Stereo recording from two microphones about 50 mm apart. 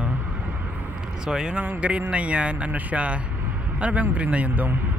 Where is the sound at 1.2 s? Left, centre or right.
Centre.